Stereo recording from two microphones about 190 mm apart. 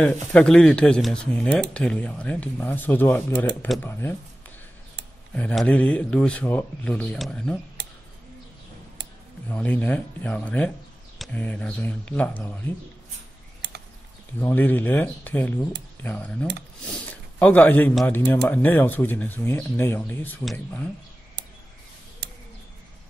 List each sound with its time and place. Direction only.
0.0 s speech: 5° left (ahead or behind)
3.6 s speech: centre (ahead or behind)
3.9 s speech: 10° left (ahead or behind)
5.3 s speech: 5° left (ahead or behind)
7.8 s a sound: 60° right (ahead or behind)
9.5 s speech: 5° left (ahead or behind)
14.4 s speech: 10° left (ahead or behind)